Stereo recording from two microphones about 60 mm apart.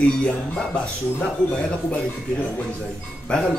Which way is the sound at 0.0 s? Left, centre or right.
Centre.